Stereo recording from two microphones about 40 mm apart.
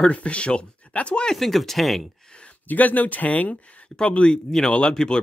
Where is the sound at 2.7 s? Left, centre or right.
Left.